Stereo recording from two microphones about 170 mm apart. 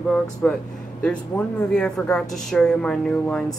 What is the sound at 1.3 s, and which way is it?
Speech, 15° left (ahead or behind).